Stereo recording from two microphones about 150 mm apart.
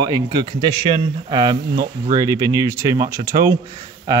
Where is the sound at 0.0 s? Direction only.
30° right (ahead or behind).